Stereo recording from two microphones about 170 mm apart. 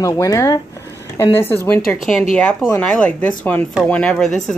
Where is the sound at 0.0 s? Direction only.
20° left (ahead or behind).